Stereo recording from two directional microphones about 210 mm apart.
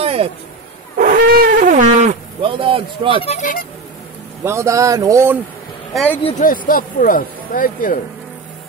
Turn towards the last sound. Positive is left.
turn(degrees=40)  # may be behind; listen again after turning